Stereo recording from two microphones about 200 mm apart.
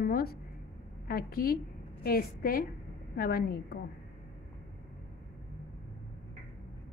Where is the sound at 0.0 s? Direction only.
50° left (ahead or behind).